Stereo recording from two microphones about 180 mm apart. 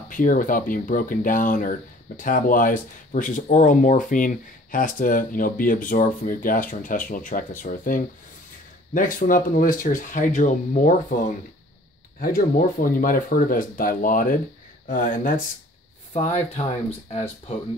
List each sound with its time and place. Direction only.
0.1 s speech: 45° left (ahead or behind)
16.1 s speech: 35° left (ahead or behind)